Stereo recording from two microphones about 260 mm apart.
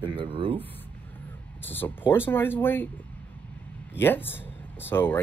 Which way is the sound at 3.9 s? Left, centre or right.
Centre.